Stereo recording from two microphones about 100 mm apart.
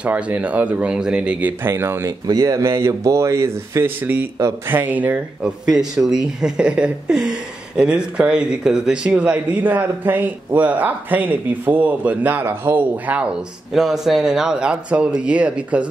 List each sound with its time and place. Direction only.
0.0 s speech: 15° right (ahead or behind)
1.6 s speech: 25° right (ahead or behind)
2.2 s a man's voice: 35° right (ahead or behind); by 5.5 s 15° right (ahead or behind)
5.8 s speech: 5° right (ahead or behind)